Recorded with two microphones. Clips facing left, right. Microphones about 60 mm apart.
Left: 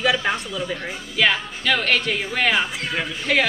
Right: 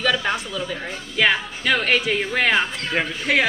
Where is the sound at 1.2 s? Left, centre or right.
Centre.